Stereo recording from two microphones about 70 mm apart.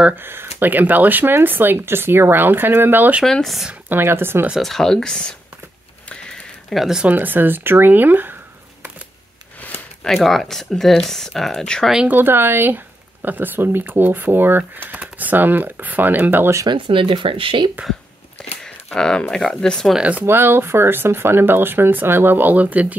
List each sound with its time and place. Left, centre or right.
0.1 s speech: right
3.3 s speech: centre
3.9 s speech: right
4.6 s speech: centre
6.0 s a sound: centre
6.7 s speech: centre
7.0 s speech: right
10.0 s speech: centre
12.1 s speech: right
16.6 s speech: right
18.6 s speech: centre
20.0 s speech: right
20.2 s speech: right